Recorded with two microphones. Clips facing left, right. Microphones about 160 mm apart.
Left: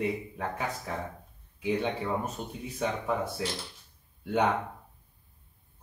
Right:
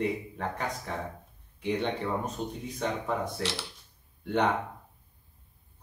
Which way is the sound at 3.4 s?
75° right (ahead or behind).